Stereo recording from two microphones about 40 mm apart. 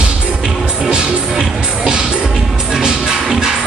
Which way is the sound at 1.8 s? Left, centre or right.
Centre.